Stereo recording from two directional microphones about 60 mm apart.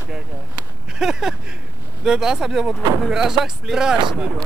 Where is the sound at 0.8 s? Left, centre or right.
Centre.